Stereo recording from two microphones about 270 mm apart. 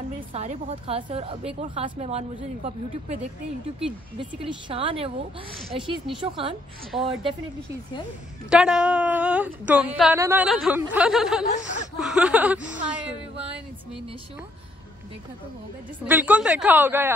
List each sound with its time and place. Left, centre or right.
0.3 s speech: right
4.6 s speech: centre
8.5 s a woman's voice: centre
11.5 s speech: left
12.0 s a woman's voice: centre
16.1 s speech: centre